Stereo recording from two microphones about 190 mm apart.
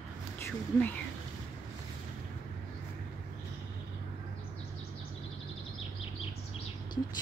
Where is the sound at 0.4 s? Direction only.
10° left (ahead or behind).